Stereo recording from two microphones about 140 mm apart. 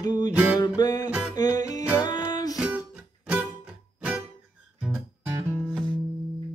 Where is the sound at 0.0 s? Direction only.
30° left (ahead or behind).